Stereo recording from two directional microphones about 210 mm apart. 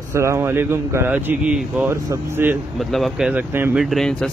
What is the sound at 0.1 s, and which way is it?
Speech, 15° right (ahead or behind).